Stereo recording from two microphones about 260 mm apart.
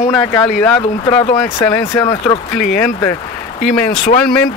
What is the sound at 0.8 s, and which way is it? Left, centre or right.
Speech, left.